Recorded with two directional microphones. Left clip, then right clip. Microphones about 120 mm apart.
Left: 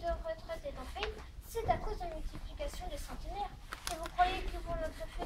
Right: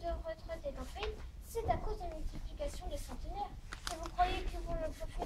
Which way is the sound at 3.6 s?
55° right (ahead or behind).